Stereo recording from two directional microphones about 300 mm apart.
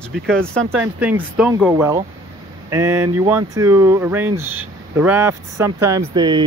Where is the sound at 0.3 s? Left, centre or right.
Centre.